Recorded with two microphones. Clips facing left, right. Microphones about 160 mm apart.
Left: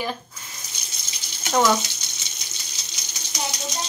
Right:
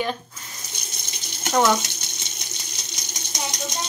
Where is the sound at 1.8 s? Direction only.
55° right (ahead or behind).